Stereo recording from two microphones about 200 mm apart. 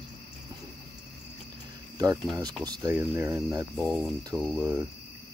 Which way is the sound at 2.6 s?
20° right (ahead or behind).